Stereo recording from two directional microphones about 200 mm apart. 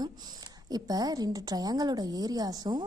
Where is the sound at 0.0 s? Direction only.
20° right (ahead or behind).